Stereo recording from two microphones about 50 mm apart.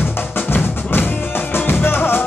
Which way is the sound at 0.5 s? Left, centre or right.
Left.